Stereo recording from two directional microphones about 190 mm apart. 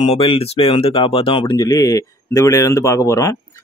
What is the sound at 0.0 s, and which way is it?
A man's voice, 30° left (ahead or behind).